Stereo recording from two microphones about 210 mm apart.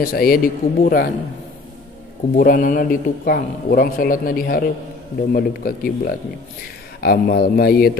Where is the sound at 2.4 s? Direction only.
40° left (ahead or behind).